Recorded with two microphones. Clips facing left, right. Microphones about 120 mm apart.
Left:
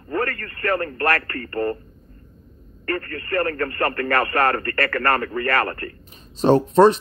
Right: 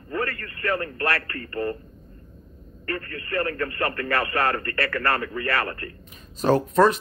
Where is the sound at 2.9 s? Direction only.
50° left (ahead or behind).